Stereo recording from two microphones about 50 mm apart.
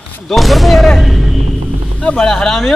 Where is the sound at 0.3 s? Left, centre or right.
Centre.